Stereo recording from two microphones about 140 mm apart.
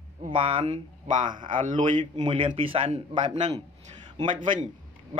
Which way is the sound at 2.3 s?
40° right (ahead or behind).